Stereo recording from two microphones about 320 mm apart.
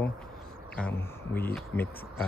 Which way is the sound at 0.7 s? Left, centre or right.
Centre.